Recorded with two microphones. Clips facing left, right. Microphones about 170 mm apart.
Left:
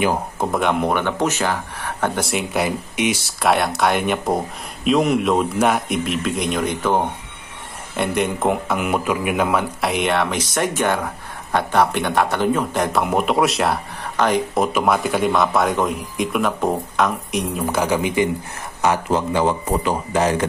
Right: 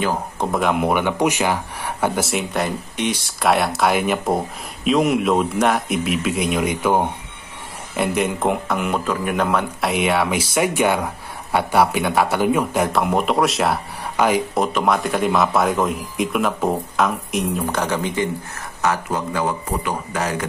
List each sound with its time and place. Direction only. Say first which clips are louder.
0.4 s speech: right 1 dB; centre (ahead or behind)
18.8 s speech: left 3 dB; 20° left (ahead or behind)